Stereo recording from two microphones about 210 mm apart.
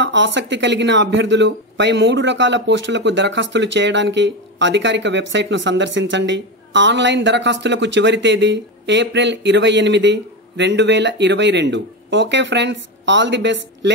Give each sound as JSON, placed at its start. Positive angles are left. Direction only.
{"t": 0.0, "sound": "speech", "side_deg": -60}